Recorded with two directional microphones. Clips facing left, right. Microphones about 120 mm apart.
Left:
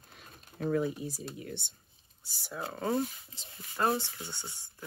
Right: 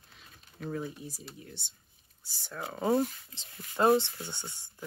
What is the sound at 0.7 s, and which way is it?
Speech, 75° left (ahead or behind).